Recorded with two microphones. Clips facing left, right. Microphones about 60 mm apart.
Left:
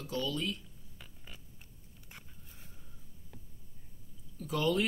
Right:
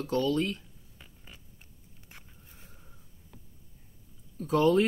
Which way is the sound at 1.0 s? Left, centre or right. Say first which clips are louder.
Even; centre.